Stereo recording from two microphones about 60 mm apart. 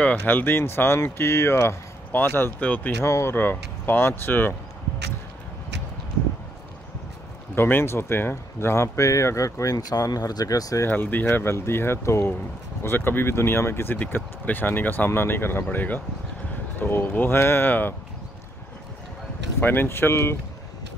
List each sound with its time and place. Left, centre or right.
0.2 s speech: left
2.1 s speech: left
2.6 s speech: left
3.0 s speech: left
3.3 s speech: left
7.5 s speech: left
10.9 s speech: left
12.8 s speech: left
13.9 s speech: left
19.6 s speech: left